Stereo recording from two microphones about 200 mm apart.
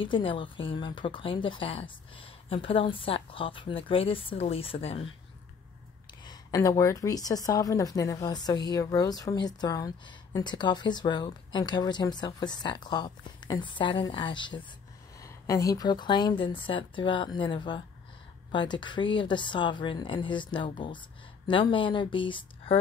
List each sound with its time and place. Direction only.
0.0 s a woman's voice: 25° left (ahead or behind)
6.2 s a woman's voice: 20° left (ahead or behind)